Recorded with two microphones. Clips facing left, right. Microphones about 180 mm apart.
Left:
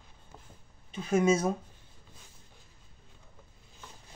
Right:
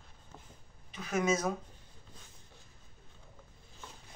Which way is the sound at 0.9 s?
30° left (ahead or behind).